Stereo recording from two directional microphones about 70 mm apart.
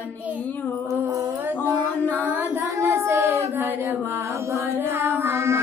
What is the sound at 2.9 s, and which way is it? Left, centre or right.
Child singing, right.